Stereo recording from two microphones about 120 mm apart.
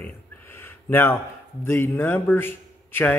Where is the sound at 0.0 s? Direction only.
15° left (ahead or behind).